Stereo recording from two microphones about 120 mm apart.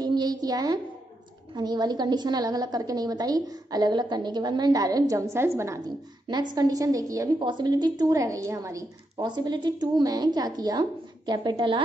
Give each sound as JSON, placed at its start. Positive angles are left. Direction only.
{"t": 0.0, "sound": "a sound", "side_deg": -35}
{"t": 1.5, "sound": "a woman's voice", "side_deg": -35}
{"t": 6.5, "sound": "a woman's voice", "side_deg": -30}
{"t": 7.3, "sound": "a woman's voice", "side_deg": -40}
{"t": 9.2, "sound": "a woman's voice", "side_deg": -35}